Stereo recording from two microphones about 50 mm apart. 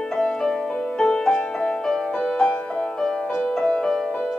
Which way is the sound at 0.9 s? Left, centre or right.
Centre.